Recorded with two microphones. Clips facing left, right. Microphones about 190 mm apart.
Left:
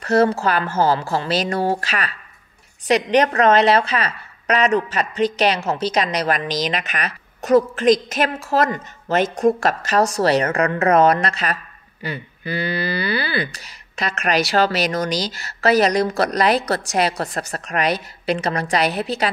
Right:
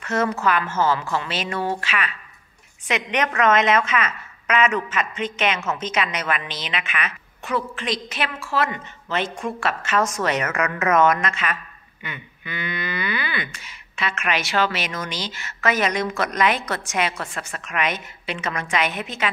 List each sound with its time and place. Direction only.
0.0 s a woman's voice: 35° left (ahead or behind)